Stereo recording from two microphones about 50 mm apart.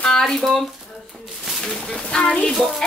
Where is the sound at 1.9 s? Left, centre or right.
Centre.